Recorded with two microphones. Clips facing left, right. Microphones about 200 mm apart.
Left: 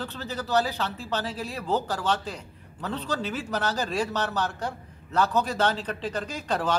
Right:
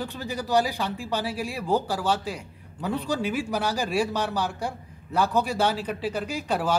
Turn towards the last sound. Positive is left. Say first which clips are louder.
# right 2 dB
turn(degrees=-10)  # may be behind; listen again after turning